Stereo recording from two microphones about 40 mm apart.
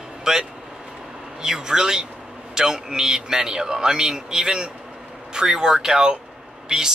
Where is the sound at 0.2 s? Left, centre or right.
Centre.